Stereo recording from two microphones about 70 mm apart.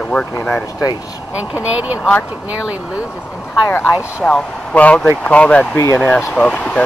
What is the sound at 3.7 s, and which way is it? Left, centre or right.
Speech, left.